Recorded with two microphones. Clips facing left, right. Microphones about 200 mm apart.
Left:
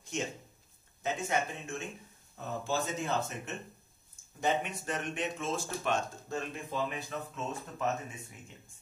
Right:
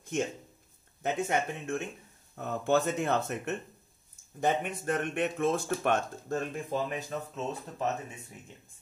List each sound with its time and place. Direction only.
0.1 s speech: 55° right (ahead or behind)
4.4 s speech: 50° right (ahead or behind)